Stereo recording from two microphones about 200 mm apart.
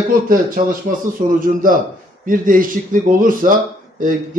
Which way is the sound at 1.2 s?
35° right (ahead or behind).